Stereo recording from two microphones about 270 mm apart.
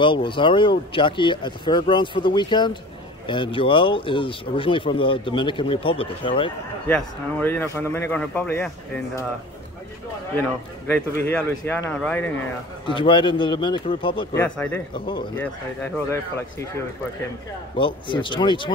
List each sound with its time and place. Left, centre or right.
0.0 s speech: centre
6.9 s speech: centre
10.9 s speech: centre
12.8 s speech: centre
14.3 s speech: centre
15.4 s speech: centre
17.7 s speech: centre